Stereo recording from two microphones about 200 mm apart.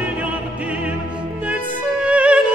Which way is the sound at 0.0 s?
5° right (ahead or behind).